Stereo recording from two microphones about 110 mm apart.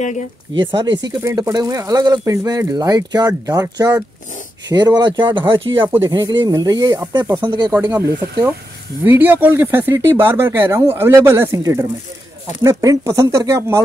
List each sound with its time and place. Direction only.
0.6 s speech: 45° right (ahead or behind)
1.2 s speech: 30° right (ahead or behind); by 5.6 s 45° right (ahead or behind)
5.8 s speech: 25° right (ahead or behind)
6.0 s speech: 40° right (ahead or behind)
7.8 s speech: 35° right (ahead or behind)
9.0 s speech: 20° right (ahead or behind)